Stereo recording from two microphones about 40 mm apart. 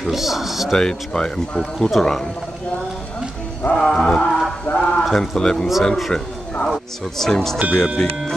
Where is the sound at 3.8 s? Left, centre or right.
Centre.